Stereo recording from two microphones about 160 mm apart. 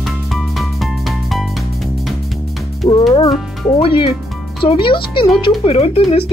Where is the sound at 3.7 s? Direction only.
35° left (ahead or behind).